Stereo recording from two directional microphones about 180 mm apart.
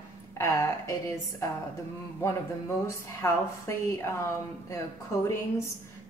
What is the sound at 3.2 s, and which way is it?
A woman's voice, 15° left (ahead or behind).